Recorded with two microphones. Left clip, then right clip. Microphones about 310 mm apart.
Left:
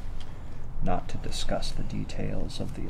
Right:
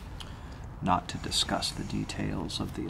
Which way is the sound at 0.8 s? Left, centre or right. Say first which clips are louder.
Right 4 dB; centre.